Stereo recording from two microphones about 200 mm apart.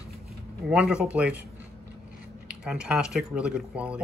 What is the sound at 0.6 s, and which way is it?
Speech, 5° right (ahead or behind).